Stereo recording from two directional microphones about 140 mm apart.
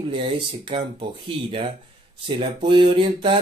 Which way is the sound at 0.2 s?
40° right (ahead or behind).